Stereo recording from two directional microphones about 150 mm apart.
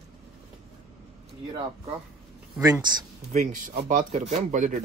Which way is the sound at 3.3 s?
55° right (ahead or behind).